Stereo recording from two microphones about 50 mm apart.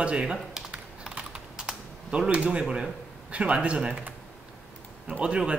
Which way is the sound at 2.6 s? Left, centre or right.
Centre.